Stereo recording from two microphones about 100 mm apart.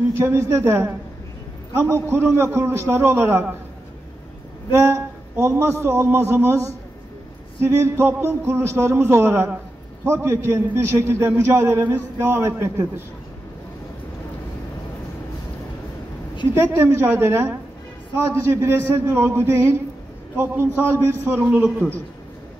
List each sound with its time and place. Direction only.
0.1 s a man's voice: 30° right (ahead or behind)
4.7 s a man's voice: 25° right (ahead or behind)
16.5 s a man's voice: 30° right (ahead or behind)